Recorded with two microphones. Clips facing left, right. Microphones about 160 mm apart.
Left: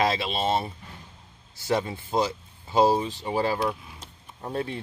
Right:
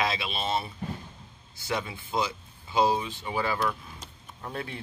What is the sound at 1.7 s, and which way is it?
Speech, 40° left (ahead or behind).